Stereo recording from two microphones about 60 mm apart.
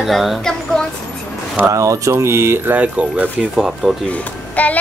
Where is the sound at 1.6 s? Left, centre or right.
Right.